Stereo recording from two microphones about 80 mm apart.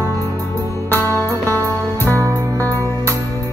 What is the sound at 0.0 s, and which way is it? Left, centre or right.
Music, left.